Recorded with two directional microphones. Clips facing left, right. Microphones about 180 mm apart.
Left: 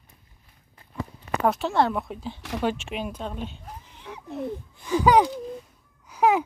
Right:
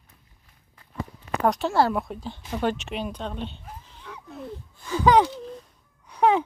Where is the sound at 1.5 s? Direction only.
Centre (ahead or behind).